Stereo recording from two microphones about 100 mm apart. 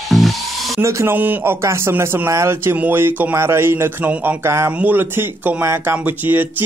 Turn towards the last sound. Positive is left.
turn(degrees=-20)  # may be behind; listen again after turning